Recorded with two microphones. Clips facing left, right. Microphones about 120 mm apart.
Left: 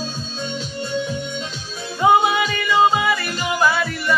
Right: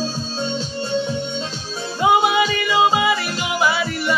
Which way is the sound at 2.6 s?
5° right (ahead or behind).